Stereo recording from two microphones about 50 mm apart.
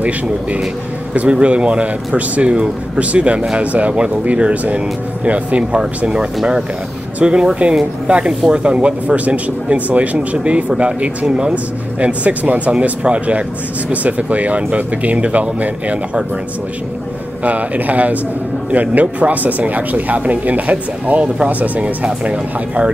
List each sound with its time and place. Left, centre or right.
1.3 s speech: right
11.5 s speech: right
17.4 s speech: right